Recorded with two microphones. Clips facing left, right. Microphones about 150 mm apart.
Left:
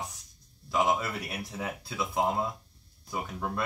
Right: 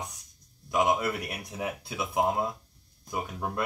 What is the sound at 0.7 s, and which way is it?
A man's voice, 15° right (ahead or behind).